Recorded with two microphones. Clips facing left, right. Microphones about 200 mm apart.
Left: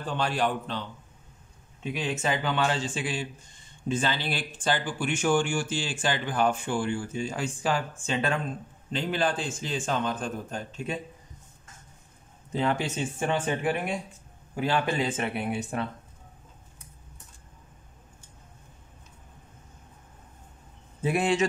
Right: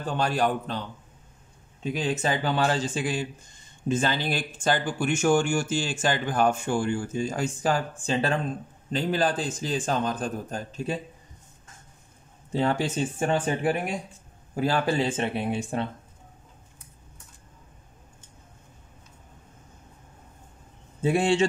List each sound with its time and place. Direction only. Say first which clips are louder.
0.0 s a man's voice: right 2 dB; 45° right (ahead or behind)
12.5 s a man's voice: right 3 dB; 35° right (ahead or behind)
21.0 s speech: right 3 dB; 30° right (ahead or behind)